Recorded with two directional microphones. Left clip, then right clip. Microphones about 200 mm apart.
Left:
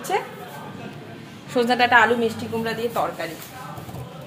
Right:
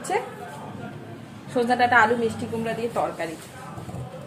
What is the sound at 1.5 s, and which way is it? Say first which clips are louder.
Speech: left 2 dB; 10° left (ahead or behind).